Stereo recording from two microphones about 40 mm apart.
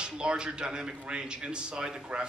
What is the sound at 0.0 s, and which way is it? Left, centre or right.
A man's voice, right.